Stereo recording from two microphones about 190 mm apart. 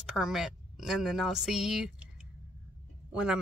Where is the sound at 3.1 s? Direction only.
5° right (ahead or behind).